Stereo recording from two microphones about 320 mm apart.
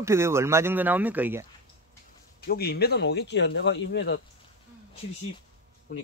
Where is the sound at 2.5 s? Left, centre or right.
Left.